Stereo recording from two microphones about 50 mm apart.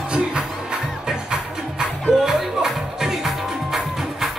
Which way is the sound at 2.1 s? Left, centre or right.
Centre.